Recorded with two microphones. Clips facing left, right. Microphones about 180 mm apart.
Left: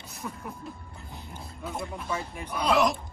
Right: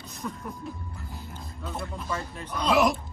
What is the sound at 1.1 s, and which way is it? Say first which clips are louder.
Dog: right 1 dB; 15° left (ahead or behind).